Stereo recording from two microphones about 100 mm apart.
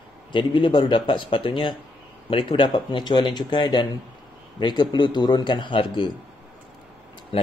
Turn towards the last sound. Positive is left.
turn(degrees=60)  # may be behind; listen again after turning